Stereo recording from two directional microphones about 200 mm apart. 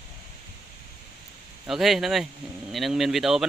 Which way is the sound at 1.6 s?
Centre (ahead or behind).